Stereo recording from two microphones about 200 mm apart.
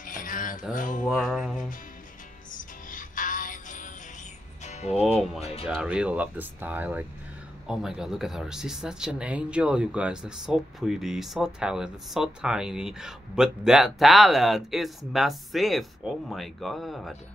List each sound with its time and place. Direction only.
0.0 s a sound: 40° left (ahead or behind)
0.7 s mantra: 40° left (ahead or behind)
1.0 s mantra: centre (ahead or behind)
2.5 s music: 40° left (ahead or behind)
5.7 s speech: 5° right (ahead or behind)